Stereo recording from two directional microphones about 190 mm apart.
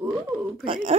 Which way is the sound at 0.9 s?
35° right (ahead or behind).